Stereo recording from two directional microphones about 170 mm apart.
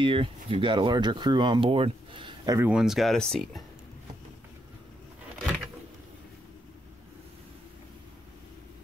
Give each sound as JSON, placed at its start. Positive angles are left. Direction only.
{"t": 0.0, "sound": "speech", "side_deg": -30}
{"t": 2.7, "sound": "speech", "side_deg": -5}